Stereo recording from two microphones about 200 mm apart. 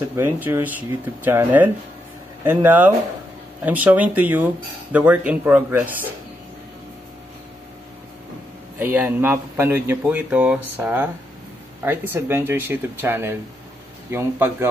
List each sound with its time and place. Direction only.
0.1 s speech: 10° right (ahead or behind)
8.7 s speech: 10° right (ahead or behind)